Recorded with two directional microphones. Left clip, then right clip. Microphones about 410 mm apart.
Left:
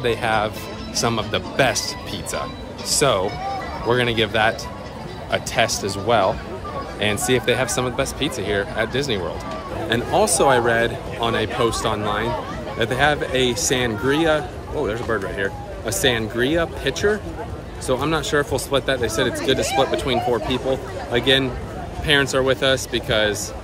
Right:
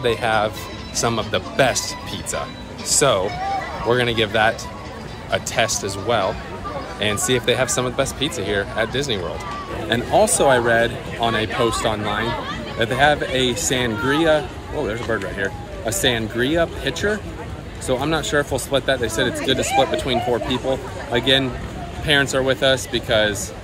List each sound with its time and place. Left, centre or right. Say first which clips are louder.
0.0 s speech: right 1 dB; centre